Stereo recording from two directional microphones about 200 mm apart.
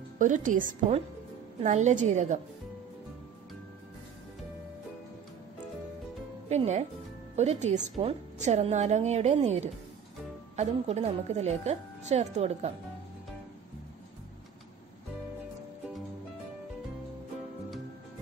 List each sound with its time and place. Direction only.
0.2 s a woman's voice: 40° right (ahead or behind)
6.5 s a woman's voice: 35° right (ahead or behind)